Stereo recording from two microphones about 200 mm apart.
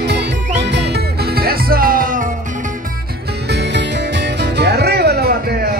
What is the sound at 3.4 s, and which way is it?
Music, 60° right (ahead or behind).